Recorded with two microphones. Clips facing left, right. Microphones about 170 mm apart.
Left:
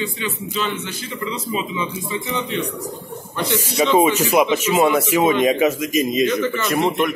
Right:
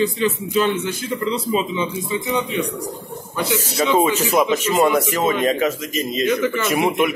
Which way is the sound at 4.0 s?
10° left (ahead or behind).